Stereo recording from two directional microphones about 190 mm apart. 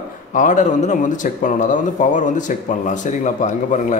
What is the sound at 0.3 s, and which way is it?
Speech, 40° left (ahead or behind).